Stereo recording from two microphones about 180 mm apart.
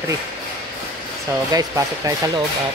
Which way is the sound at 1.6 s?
20° right (ahead or behind).